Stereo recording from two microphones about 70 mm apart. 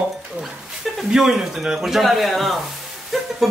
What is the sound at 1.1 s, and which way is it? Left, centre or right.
Speech, centre.